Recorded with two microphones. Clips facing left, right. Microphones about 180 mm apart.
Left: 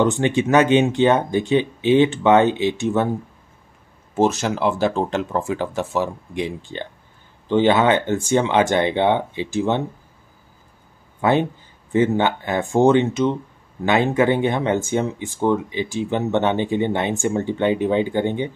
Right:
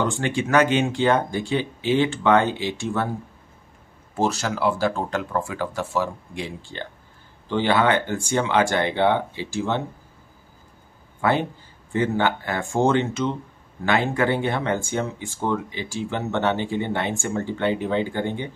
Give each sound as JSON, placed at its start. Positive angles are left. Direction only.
{"t": 0.0, "sound": "speech", "side_deg": 20}
{"t": 4.1, "sound": "speech", "side_deg": 20}
{"t": 11.1, "sound": "speech", "side_deg": 20}